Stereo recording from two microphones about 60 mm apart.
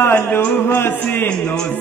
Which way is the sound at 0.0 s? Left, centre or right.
Left.